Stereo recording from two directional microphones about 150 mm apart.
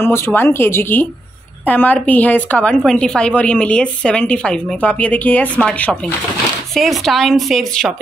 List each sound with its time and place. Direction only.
0.0 s a woman's voice: 15° left (ahead or behind)